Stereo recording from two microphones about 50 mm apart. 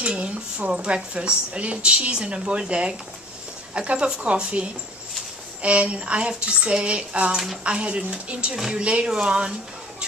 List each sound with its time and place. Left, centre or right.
0.0 s a woman's voice: right